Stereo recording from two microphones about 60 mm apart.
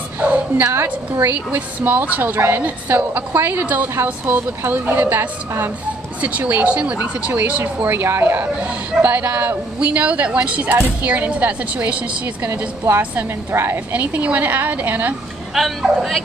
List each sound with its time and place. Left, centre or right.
0.2 s dog: right
1.1 s a woman's voice: right
8.0 s a woman's voice: right
8.5 s speech: right
12.4 s a woman's voice: right
13.9 s speech: right
15.5 s speech: centre